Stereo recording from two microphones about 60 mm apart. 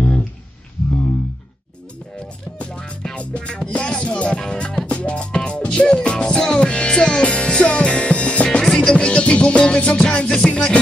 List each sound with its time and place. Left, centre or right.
2.6 s music: centre
8.6 s music: centre
8.9 s music: centre